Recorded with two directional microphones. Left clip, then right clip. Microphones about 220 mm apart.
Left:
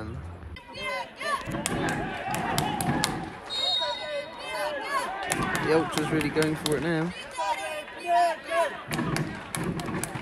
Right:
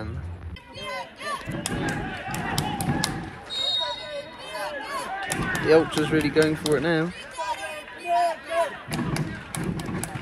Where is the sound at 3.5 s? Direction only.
40° left (ahead or behind).